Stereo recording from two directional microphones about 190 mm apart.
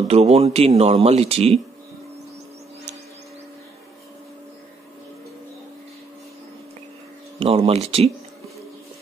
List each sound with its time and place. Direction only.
0.1 s speech: 35° right (ahead or behind)
7.3 s speech: 30° right (ahead or behind)